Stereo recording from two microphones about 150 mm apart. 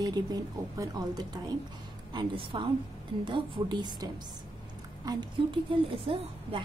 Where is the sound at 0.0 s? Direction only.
25° right (ahead or behind).